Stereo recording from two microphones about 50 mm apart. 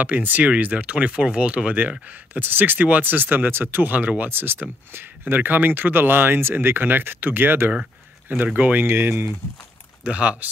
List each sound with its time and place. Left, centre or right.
0.0 s speech: right
2.4 s speech: right
4.3 s speech: right
8.8 s speech: right
10.0 s speech: right